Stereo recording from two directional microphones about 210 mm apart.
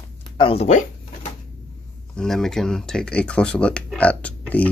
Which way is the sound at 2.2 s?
Centre (ahead or behind).